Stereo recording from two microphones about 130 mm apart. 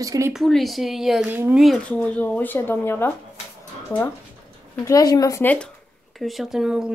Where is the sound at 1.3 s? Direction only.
15° right (ahead or behind).